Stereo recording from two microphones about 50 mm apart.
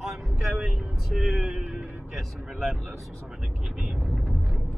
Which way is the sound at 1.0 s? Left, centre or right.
Centre.